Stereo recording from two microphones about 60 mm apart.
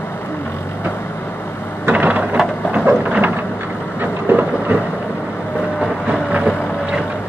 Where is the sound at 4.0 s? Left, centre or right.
Right.